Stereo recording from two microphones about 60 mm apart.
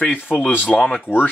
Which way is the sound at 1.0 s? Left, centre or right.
Left.